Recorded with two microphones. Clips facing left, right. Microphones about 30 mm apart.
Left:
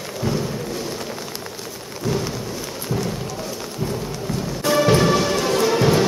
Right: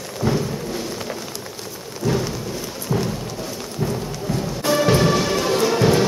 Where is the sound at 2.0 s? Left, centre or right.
Centre.